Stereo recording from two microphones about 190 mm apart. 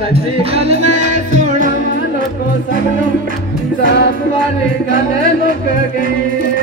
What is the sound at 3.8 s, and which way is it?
Music, 60° left (ahead or behind).